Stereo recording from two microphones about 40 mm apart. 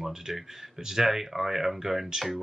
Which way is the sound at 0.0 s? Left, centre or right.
Centre.